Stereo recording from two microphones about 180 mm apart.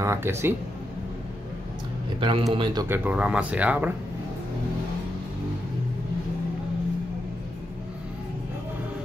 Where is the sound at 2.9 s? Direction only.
10° right (ahead or behind).